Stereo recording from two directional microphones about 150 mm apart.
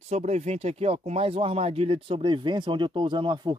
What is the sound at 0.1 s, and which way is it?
Speech, 50° right (ahead or behind).